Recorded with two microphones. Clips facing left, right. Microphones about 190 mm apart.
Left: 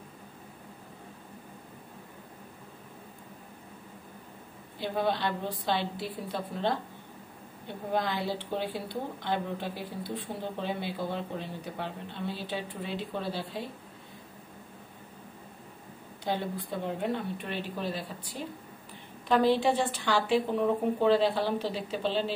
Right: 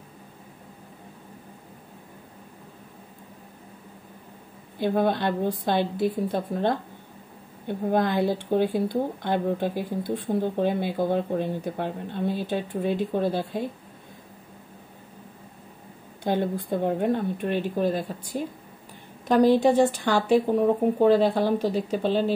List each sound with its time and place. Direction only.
4.7 s speech: 50° right (ahead or behind)
16.3 s speech: 50° right (ahead or behind)